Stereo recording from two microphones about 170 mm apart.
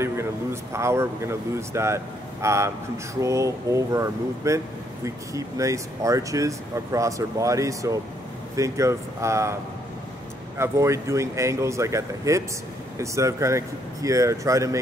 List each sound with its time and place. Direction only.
0.0 s a sound: 15° right (ahead or behind)
0.7 s speech: 15° right (ahead or behind)
10.6 s speech: 15° right (ahead or behind)